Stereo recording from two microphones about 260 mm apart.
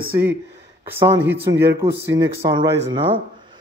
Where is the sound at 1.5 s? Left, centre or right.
Right.